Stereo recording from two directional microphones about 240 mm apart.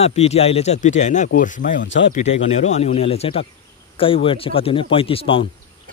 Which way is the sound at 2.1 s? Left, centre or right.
Left.